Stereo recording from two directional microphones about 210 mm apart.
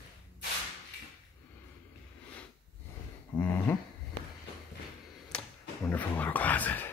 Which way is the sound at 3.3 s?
10° left (ahead or behind).